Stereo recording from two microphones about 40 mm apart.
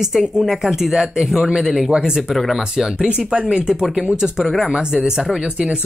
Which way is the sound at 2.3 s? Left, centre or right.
Centre.